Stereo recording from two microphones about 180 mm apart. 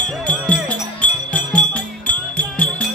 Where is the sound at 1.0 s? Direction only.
5° left (ahead or behind).